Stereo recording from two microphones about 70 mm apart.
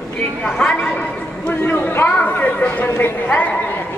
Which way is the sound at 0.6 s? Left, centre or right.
Centre.